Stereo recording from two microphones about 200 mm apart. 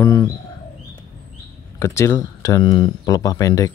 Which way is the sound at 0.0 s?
15° left (ahead or behind).